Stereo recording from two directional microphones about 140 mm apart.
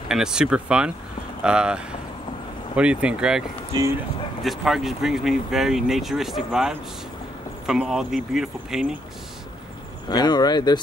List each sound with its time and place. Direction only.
0.1 s speech: 5° right (ahead or behind)
10.0 s speech: 30° left (ahead or behind)